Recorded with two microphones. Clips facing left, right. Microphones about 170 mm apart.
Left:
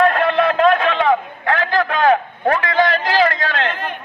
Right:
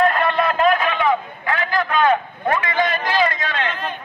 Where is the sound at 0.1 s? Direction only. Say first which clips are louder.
Left 3 dB; 70° left (ahead or behind).